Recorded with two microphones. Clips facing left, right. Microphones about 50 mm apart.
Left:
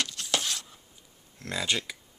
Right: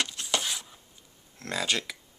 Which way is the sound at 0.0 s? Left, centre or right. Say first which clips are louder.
Right 1 dB; centre.